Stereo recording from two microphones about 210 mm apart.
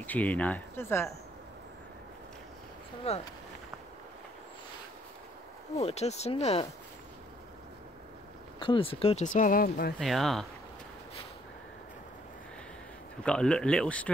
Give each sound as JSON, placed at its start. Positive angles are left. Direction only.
{"t": 0.0, "sound": "speech", "side_deg": 10}
{"t": 3.1, "sound": "speech", "side_deg": 30}
{"t": 5.8, "sound": "speech", "side_deg": 30}
{"t": 8.5, "sound": "speech", "side_deg": 25}
{"t": 9.9, "sound": "speech", "side_deg": 0}
{"t": 13.2, "sound": "speech", "side_deg": 5}